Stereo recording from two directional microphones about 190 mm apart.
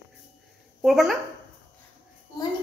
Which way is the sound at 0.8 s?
Centre (ahead or behind).